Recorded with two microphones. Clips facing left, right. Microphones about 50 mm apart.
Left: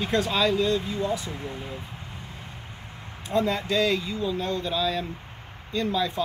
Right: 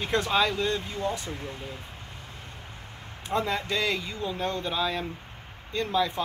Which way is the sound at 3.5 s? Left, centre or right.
Right.